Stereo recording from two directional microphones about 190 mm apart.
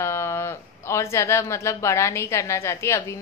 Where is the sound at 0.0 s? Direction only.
15° left (ahead or behind).